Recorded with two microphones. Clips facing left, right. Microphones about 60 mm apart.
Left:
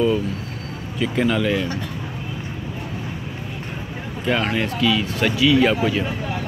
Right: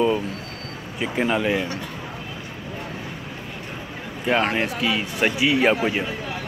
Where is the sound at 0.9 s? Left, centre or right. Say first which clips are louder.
Left 2 dB; right.